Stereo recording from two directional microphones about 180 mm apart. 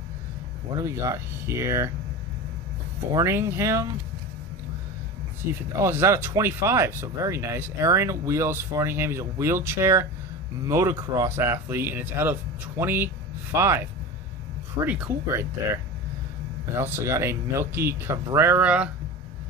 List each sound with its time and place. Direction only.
0.7 s speech: 15° right (ahead or behind)
3.1 s speech: 15° right (ahead or behind)
5.7 s speech: 15° right (ahead or behind)